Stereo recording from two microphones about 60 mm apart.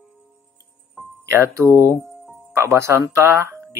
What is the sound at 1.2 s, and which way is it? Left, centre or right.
Speech, right.